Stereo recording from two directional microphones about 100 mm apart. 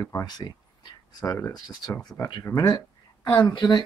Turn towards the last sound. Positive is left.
turn(degrees=50)  # may be behind; listen again after turning